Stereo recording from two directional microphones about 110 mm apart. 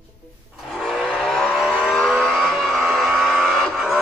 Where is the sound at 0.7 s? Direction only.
5° right (ahead or behind).